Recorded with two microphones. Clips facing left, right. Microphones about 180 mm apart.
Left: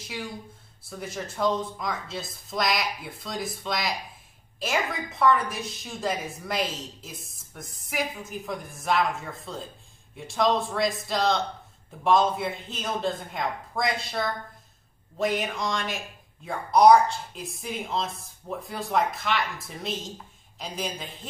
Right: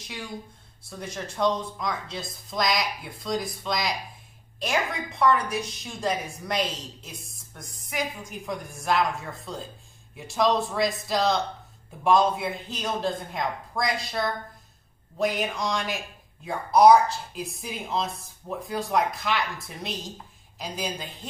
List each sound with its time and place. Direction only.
0.8 s a woman's voice: centre (ahead or behind)
5.2 s a woman's voice: centre (ahead or behind)